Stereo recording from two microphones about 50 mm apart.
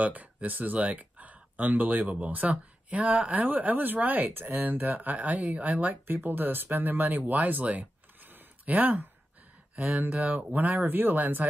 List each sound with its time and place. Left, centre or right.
0.0 s speech: right
6.0 s speech: right